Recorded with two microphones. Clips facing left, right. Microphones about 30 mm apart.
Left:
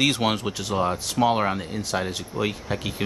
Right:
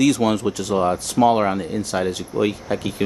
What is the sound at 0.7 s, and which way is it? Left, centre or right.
Speech, centre.